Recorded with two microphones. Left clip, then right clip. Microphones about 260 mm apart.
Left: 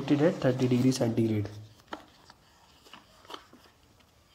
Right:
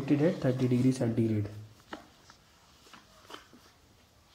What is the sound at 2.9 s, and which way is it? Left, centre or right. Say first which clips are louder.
Biting: left 3 dB; left.